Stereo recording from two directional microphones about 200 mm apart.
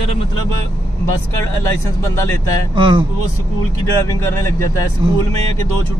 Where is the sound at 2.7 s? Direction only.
25° right (ahead or behind).